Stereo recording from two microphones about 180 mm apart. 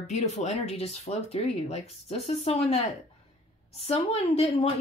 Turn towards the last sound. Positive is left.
turn(degrees=35)  # may be behind; listen again after turning